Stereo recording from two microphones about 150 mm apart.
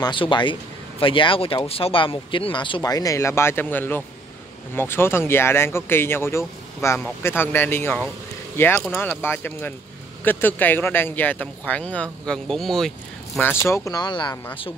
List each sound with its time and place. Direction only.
0.0 s speech: 30° left (ahead or behind); by 12.9 s centre (ahead or behind)
13.4 s speech: 15° left (ahead or behind); by 14.7 s 30° left (ahead or behind)